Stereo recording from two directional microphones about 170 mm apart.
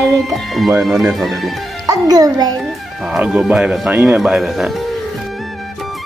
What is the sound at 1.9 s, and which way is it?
Speech, 20° right (ahead or behind).